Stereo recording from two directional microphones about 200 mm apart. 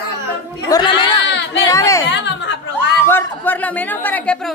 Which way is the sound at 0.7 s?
25° left (ahead or behind).